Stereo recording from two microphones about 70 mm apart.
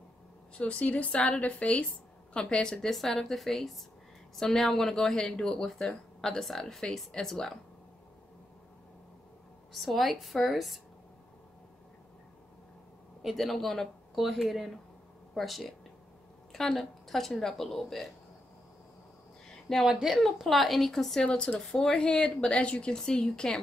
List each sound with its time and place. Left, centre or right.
0.6 s speech: centre
9.8 s speech: centre
13.2 s speech: centre
19.9 s speech: centre